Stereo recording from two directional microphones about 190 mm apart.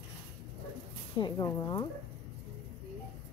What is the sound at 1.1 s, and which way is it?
Speech, 20° left (ahead or behind).